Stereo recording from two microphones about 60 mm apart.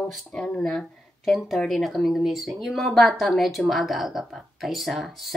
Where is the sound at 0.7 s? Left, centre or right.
Centre.